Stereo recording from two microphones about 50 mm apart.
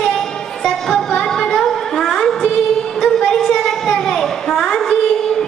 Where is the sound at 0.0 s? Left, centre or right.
Centre.